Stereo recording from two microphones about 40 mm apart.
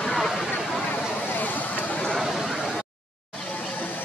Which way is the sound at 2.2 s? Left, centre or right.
Centre.